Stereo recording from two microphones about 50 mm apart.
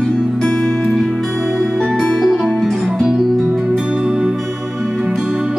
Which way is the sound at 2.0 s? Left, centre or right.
Centre.